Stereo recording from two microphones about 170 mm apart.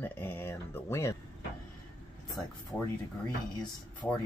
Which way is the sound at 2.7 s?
15° left (ahead or behind).